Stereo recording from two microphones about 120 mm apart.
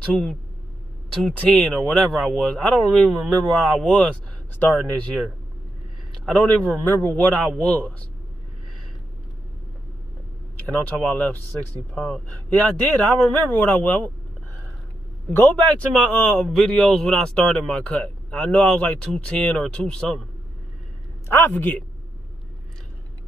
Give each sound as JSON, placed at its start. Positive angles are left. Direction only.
{"t": 0.0, "sound": "a man's voice", "side_deg": 5}
{"t": 6.2, "sound": "a man's voice", "side_deg": 10}
{"t": 10.7, "sound": "a man's voice", "side_deg": 10}
{"t": 15.2, "sound": "a man's voice", "side_deg": 15}
{"t": 21.3, "sound": "a man's voice", "side_deg": 15}